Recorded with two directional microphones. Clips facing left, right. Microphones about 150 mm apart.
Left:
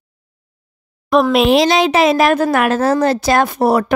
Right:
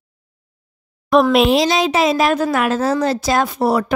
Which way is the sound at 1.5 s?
65° left (ahead or behind).